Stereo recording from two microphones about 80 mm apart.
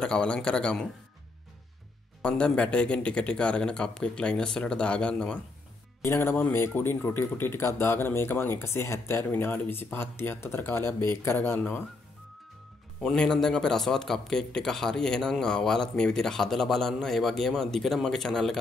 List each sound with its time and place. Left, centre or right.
0.0 s a man's voice: centre
2.2 s a man's voice: centre
6.0 s speech: left
13.0 s speech: centre